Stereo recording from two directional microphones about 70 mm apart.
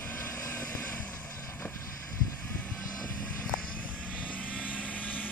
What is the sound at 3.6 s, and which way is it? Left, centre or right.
Vehicle, centre.